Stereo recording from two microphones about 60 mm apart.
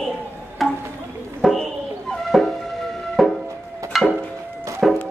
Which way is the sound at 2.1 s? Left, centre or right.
Centre.